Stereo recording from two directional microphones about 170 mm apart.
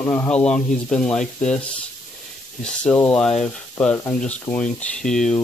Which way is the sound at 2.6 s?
5° left (ahead or behind).